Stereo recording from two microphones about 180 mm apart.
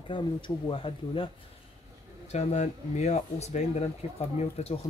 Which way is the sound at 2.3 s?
35° left (ahead or behind).